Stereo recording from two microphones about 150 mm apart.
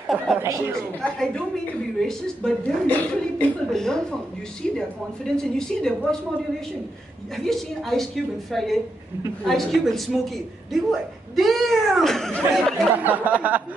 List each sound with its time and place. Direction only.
0.4 s speech: 20° right (ahead or behind)
1.0 s a woman's voice: 5° left (ahead or behind)
7.3 s a woman's voice: centre (ahead or behind)
12.9 s speech: 10° right (ahead or behind)